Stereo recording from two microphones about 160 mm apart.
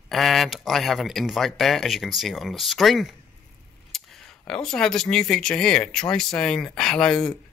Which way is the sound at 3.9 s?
Centre (ahead or behind).